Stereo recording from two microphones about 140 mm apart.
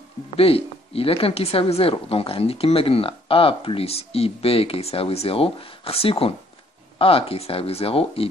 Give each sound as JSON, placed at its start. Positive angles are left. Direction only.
{"t": 0.4, "sound": "speech", "side_deg": 45}